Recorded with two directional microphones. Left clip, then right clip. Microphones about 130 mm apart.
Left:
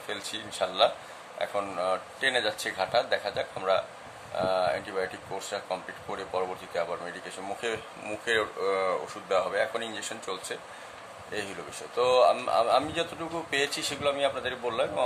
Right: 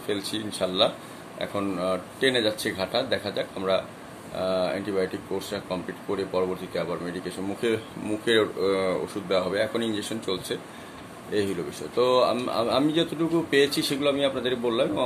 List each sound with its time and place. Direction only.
0.0 s speech: 15° left (ahead or behind)
12.0 s speech: 20° left (ahead or behind)